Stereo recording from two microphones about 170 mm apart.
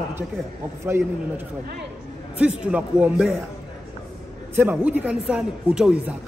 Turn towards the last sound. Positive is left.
turn(degrees=-5)  # may be behind; listen again after turning